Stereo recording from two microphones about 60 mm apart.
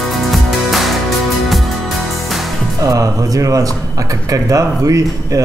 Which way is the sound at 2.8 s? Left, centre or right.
Right.